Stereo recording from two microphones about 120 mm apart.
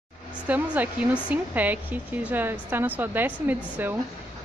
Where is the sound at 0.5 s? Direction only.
15° right (ahead or behind).